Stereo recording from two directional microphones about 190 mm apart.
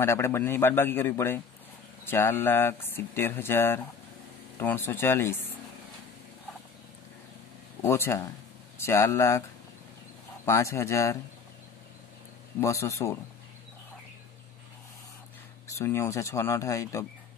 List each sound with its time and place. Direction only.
0.0 s speech: 15° left (ahead or behind)
7.8 s speech: 15° left (ahead or behind)
10.4 s speech: 15° left (ahead or behind)
12.5 s speech: 15° left (ahead or behind)
15.8 s speech: 15° left (ahead or behind)